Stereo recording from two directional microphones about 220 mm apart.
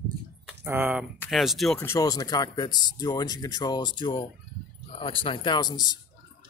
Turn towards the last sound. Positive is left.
turn(degrees=20)  # may be behind; listen again after turning